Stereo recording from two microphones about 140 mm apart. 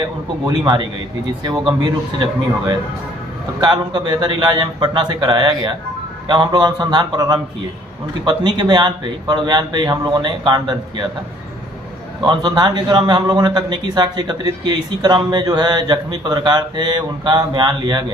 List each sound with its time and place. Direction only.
0.5 s a man's voice: 35° right (ahead or behind)
3.6 s a man's voice: 35° right (ahead or behind)
12.2 s a man's voice: 35° right (ahead or behind)